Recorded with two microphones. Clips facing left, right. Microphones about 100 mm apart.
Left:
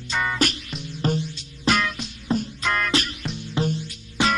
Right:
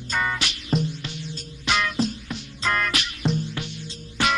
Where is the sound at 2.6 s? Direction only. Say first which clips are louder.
Right 5 dB; centre (ahead or behind).